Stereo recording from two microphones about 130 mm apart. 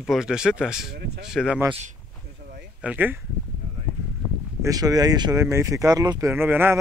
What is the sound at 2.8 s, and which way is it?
Speech, 10° right (ahead or behind).